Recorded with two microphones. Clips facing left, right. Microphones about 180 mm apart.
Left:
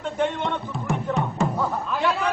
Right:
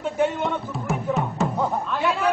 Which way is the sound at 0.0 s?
5° right (ahead or behind).